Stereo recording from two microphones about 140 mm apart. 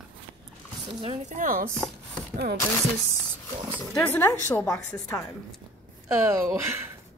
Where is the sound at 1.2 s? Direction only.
80° right.